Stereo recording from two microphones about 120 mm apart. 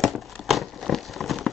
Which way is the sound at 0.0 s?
Centre (ahead or behind).